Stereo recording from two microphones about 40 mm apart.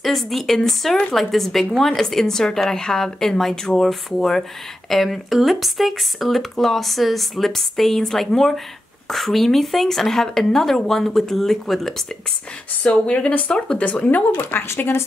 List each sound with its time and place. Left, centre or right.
0.0 s a woman's voice: centre
12.8 s speech: left
14.3 s speech: left